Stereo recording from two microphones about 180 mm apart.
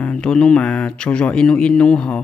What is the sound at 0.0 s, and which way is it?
Speech, 5° left (ahead or behind).